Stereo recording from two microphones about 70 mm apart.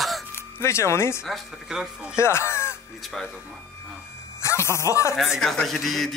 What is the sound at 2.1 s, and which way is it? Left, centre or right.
Speech, left.